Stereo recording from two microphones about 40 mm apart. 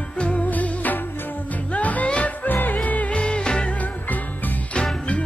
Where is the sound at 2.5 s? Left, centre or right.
Left.